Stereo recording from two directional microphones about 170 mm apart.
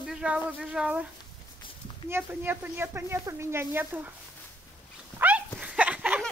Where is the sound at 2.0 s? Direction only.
15° right (ahead or behind).